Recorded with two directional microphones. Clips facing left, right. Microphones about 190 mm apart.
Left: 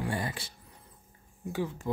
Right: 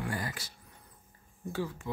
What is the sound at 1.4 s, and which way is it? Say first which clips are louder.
Speech: left 2 dB; 15° left (ahead or behind).